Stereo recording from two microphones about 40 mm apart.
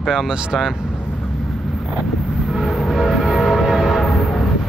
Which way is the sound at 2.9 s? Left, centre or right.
Centre.